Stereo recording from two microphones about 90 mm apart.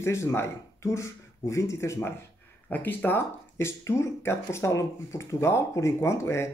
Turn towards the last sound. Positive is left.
turn(degrees=30)  # may be behind; listen again after turning